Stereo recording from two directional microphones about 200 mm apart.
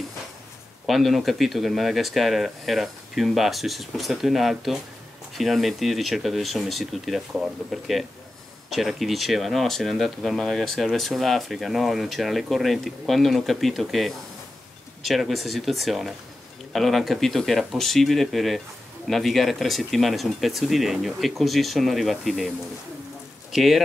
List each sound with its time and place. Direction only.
0.8 s speech: centre (ahead or behind)
23.5 s speech: centre (ahead or behind)